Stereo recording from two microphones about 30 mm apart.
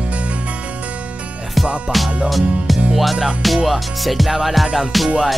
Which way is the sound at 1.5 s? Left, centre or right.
Centre.